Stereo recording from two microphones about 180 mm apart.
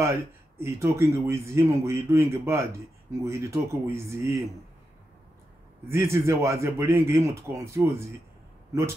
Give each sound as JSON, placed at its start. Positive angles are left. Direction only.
{"t": 0.0, "sound": "a man's voice", "side_deg": -15}
{"t": 5.9, "sound": "a man's voice", "side_deg": -15}